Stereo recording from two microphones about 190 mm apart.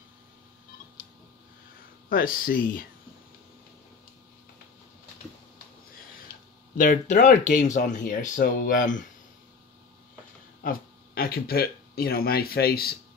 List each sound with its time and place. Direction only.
2.0 s speech: 50° left (ahead or behind)
6.8 s speech: 45° left (ahead or behind)
10.6 s speech: 50° left (ahead or behind)